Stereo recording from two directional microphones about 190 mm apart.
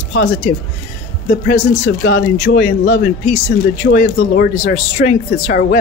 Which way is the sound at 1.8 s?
70° left (ahead or behind).